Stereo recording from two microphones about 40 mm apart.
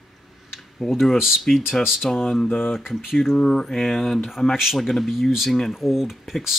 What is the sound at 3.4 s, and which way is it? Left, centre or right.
Mantra, centre.